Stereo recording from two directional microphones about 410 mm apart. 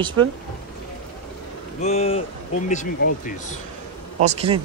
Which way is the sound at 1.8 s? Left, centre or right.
Centre.